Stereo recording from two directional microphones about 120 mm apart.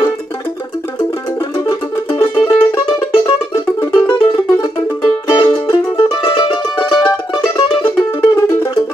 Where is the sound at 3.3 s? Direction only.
30° left (ahead or behind).